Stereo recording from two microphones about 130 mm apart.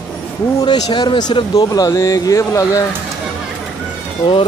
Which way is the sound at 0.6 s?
35° left (ahead or behind).